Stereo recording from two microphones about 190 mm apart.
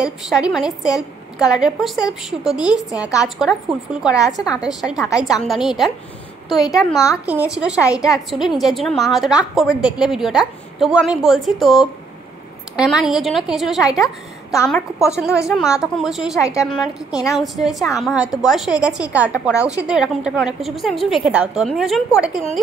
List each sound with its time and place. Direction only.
0.0 s a woman's voice: centre (ahead or behind)
4.1 s a woman's voice: 20° left (ahead or behind)
4.5 s a woman's voice: 5° right (ahead or behind)
7.2 s a woman's voice: 5° right (ahead or behind)
14.0 s a woman's voice: 15° left (ahead or behind)
14.7 s a woman's voice: 5° right (ahead or behind)
19.5 s a woman's voice: 15° left (ahead or behind)
19.8 s a woman's voice: 5° right (ahead or behind)